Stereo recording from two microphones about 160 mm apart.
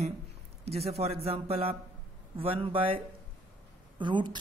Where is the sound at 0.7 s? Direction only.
40° right (ahead or behind).